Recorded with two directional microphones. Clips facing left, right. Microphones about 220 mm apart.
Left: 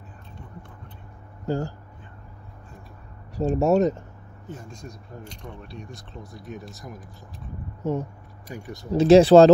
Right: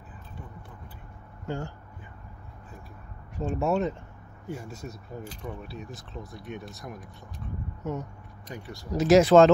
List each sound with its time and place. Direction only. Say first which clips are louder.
1.5 s speech: left 7 dB; 35° left (ahead or behind)
3.3 s speech: left 7 dB; 40° left (ahead or behind)
4.5 s speech: right 2 dB; 10° right (ahead or behind)
7.8 s speech: left 7 dB; 30° left (ahead or behind)
8.5 s speech: left 3 dB; 15° left (ahead or behind)
8.9 s speech: left 5 dB; 30° left (ahead or behind)